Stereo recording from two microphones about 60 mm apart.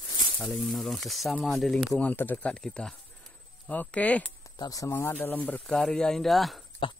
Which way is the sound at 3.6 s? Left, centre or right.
Left.